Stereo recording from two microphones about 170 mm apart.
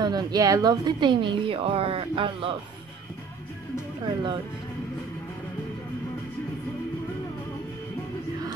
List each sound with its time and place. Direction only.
0.0 s a woman's voice: 25° right (ahead or behind)
4.0 s a woman's voice: 30° right (ahead or behind)